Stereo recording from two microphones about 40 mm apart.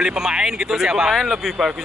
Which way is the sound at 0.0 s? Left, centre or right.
Centre.